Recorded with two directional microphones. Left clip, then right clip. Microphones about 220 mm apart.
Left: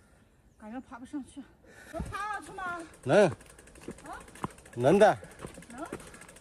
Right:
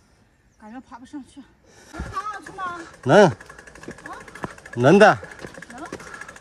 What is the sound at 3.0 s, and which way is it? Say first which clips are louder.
Speech: right 9 dB; 35° right (ahead or behind).